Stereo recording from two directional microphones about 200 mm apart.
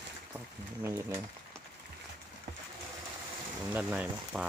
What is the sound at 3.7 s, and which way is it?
Speech, 10° right (ahead or behind).